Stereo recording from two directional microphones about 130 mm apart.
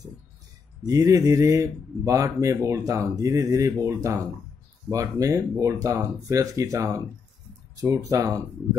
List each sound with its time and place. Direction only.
0.8 s speech: 25° right (ahead or behind)